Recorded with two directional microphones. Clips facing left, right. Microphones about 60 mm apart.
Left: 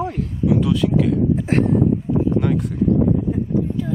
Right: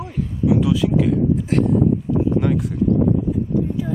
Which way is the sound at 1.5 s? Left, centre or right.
Left.